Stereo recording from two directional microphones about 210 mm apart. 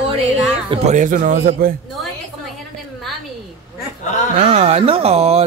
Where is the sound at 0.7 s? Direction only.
35° right (ahead or behind).